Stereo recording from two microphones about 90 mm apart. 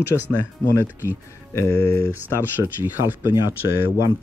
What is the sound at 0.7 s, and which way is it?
Speech, 30° left (ahead or behind).